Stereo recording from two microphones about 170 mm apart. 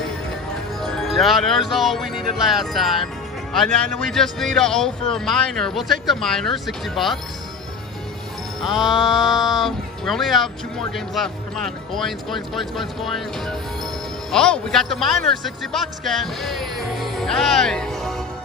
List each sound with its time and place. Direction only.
0.8 s speech: centre (ahead or behind)
8.6 s speech: centre (ahead or behind)
15.4 s music: centre (ahead or behind)